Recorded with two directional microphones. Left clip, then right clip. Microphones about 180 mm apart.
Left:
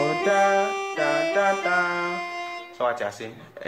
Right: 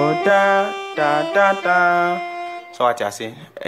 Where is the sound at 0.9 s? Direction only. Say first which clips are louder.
Right 7 dB; 40° right (ahead or behind).